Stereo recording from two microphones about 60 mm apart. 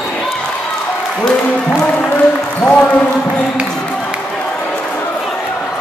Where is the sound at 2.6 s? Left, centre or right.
Centre.